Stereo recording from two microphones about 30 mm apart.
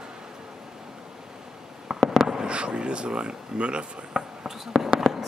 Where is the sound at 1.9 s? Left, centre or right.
Centre.